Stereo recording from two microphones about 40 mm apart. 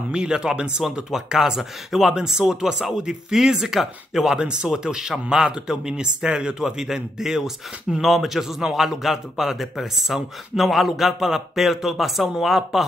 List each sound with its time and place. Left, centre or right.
0.1 s a man's voice: right